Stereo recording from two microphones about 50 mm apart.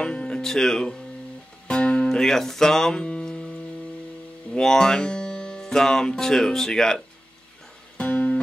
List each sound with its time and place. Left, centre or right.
0.0 s speech: centre
1.7 s music: centre
2.0 s speech: centre
4.6 s music: centre
8.0 s music: left